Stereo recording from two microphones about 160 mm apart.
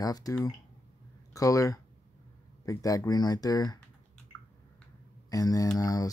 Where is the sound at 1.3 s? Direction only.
20° left (ahead or behind).